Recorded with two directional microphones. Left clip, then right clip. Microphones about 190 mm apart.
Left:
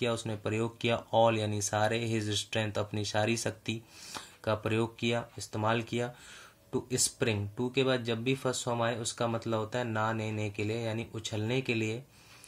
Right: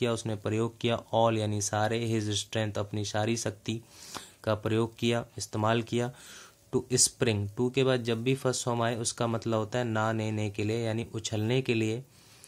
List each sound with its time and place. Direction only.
0.0 s speech: 25° right (ahead or behind)